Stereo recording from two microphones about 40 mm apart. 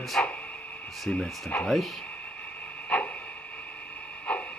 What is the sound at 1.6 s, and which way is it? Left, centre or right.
Speech, centre.